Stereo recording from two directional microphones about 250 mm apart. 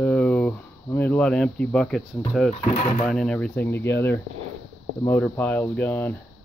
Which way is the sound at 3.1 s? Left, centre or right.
Centre.